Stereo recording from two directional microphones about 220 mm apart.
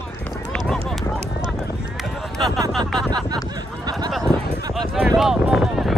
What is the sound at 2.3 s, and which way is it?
Speech, centre (ahead or behind).